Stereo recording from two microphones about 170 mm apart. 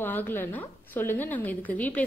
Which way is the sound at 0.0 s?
10° left (ahead or behind).